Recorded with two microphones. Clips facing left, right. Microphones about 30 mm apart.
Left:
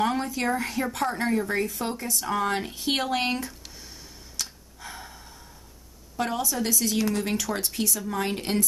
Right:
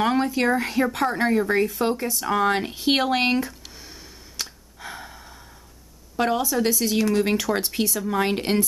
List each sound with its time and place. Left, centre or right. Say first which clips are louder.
0.0 s a sound: right 5 dB; right
0.5 s speech: right 5 dB; right
2.1 s a sound: right 2 dB; centre
6.1 s speech: right 5 dB; right
7.0 s speech: right 7 dB; centre
7.5 s speech: right 4 dB; right